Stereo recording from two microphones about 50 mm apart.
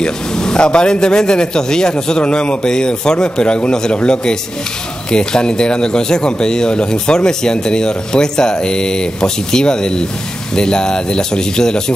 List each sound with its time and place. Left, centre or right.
0.0 s speech: centre